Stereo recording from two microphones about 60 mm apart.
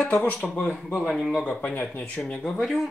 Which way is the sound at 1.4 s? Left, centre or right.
Left.